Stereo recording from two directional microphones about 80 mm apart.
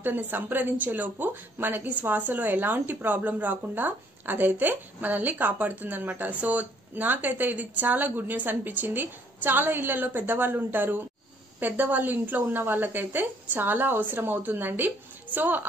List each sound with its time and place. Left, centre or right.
0.0 s speech: right